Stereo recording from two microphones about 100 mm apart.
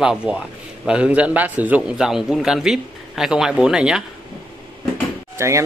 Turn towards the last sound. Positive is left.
turn(degrees=-30)  # may be behind; listen again after turning